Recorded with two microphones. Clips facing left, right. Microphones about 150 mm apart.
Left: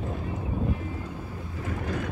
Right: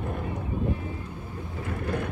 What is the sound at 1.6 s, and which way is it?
Vehicle, 55° right (ahead or behind).